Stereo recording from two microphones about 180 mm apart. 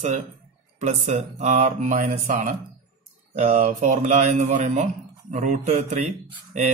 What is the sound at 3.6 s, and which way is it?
Speech, 40° right (ahead or behind).